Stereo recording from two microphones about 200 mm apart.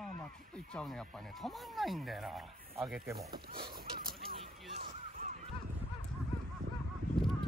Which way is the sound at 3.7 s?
50° right (ahead or behind).